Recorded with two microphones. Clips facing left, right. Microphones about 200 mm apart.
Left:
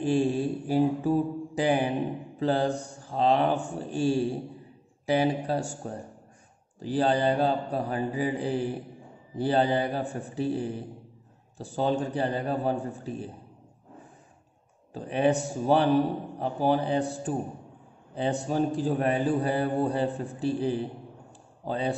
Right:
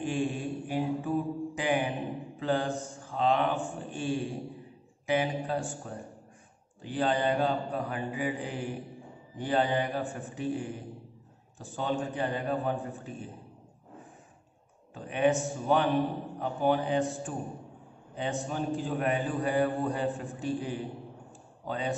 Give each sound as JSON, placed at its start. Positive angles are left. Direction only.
{"t": 0.0, "sound": "mantra", "side_deg": 35}
{"t": 15.0, "sound": "mantra", "side_deg": 35}